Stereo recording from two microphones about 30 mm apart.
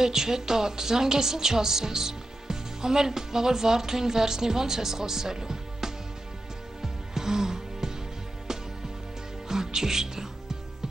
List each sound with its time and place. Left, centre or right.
0.0 s a woman's voice: centre
6.8 s music: centre
9.5 s music: centre